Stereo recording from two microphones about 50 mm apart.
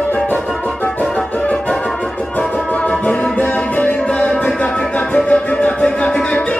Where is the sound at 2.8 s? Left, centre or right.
Left.